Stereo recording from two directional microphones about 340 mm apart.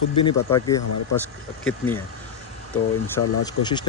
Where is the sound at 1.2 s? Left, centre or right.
Centre.